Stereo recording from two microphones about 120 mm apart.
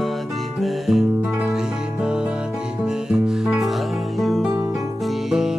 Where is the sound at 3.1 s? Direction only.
5° right (ahead or behind).